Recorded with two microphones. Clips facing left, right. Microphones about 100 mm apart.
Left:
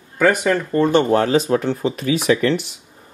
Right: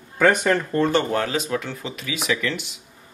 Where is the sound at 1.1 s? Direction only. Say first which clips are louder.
Left 8 dB; 35° left (ahead or behind).